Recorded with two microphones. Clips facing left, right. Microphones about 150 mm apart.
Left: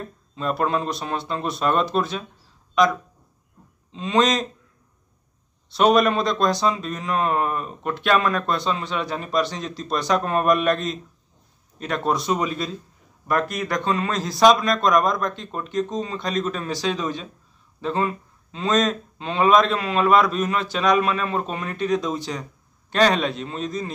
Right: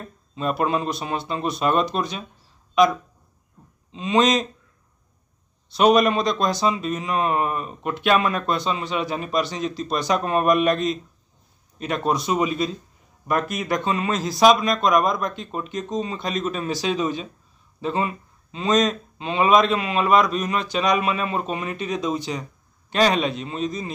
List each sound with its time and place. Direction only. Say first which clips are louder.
0.4 s speech: even; 10° right (ahead or behind)
3.9 s speech: right 1 dB; 5° right (ahead or behind)
5.7 s speech: right 1 dB; centre (ahead or behind)